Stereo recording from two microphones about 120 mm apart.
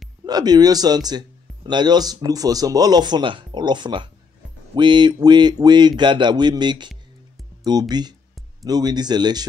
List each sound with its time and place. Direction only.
0.3 s speech: 35° right (ahead or behind)